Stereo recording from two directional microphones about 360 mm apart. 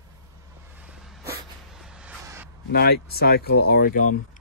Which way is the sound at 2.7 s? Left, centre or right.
Left.